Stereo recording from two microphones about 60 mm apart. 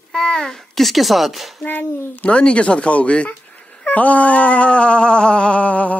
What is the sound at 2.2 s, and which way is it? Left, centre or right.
Speech, left.